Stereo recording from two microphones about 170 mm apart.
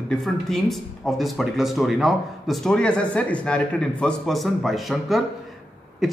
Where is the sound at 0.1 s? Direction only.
Centre (ahead or behind).